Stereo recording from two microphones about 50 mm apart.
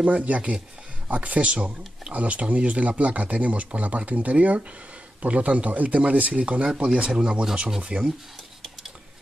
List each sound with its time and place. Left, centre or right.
0.0 s speech: right
7.1 s speech: centre